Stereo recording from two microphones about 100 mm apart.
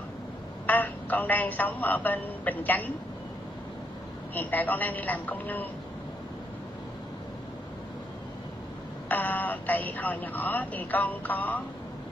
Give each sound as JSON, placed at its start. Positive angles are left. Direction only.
{"t": 0.7, "sound": "speech", "side_deg": 15}
{"t": 4.4, "sound": "speech", "side_deg": 20}
{"t": 9.1, "sound": "speech", "side_deg": 20}